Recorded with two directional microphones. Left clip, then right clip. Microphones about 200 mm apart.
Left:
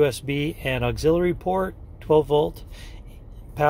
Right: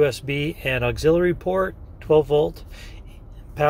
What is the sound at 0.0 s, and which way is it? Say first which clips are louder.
Speech: right 1 dB; 15° left (ahead or behind).